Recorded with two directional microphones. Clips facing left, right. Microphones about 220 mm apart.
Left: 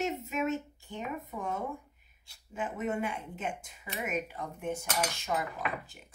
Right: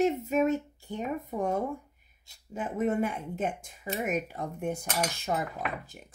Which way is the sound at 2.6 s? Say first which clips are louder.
Right 5 dB; 35° right (ahead or behind).